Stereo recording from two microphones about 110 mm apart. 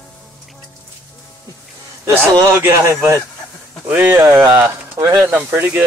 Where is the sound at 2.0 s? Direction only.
30° right (ahead or behind).